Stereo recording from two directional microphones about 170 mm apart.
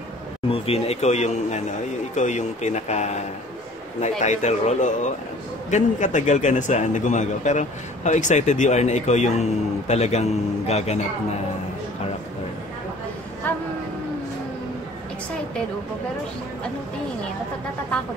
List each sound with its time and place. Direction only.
0.5 s a man's voice: 35° left (ahead or behind)
4.2 s a man's voice: 45° left (ahead or behind)
13.4 s a sound: 10° left (ahead or behind)